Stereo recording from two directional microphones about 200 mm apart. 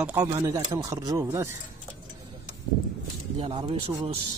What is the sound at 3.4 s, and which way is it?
Speech, 25° right (ahead or behind).